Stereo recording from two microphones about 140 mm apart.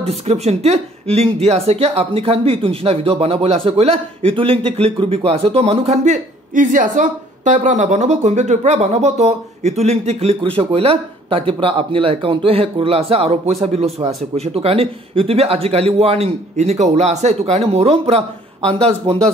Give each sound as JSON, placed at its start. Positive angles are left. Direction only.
{"t": 0.0, "sound": "speech", "side_deg": -50}